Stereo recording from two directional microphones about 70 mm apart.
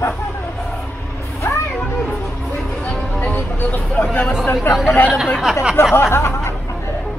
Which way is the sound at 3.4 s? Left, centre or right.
Left.